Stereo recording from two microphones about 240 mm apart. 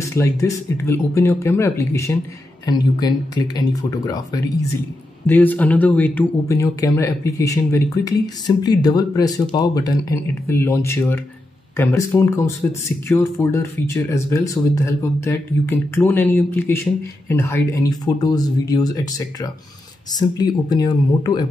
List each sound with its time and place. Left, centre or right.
0.0 s speech: centre